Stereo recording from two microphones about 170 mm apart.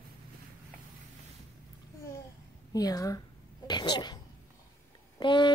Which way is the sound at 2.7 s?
20° left (ahead or behind).